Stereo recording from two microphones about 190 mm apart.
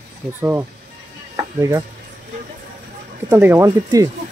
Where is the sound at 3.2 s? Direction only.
15° right (ahead or behind).